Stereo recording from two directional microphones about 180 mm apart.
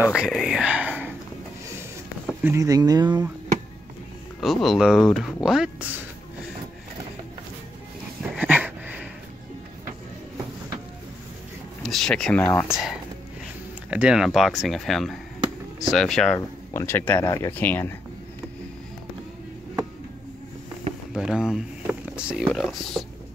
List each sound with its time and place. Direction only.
0.0 s speech: 5° right (ahead or behind)
1.8 s a sound: 10° right (ahead or behind)
4.4 s speech: centre (ahead or behind)
8.2 s dog: 10° right (ahead or behind)
11.8 s speech: 5° left (ahead or behind)
13.8 s speech: 5° right (ahead or behind)
16.3 s speech: 15° left (ahead or behind)
21.1 s speech: 5° right (ahead or behind)